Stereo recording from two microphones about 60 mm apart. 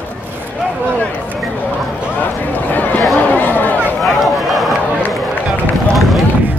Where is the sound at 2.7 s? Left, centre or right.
Left.